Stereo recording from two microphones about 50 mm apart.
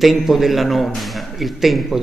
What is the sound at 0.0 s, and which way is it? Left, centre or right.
A man's voice, centre.